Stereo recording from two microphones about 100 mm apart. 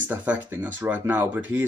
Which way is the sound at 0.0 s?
15° right (ahead or behind).